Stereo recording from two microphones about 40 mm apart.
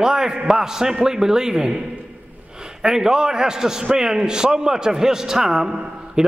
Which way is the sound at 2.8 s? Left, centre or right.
Centre.